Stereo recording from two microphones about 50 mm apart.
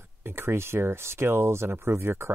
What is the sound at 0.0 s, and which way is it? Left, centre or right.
Speech, right.